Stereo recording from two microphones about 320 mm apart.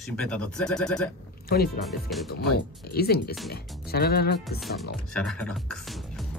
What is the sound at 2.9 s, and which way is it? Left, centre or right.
Speech, left.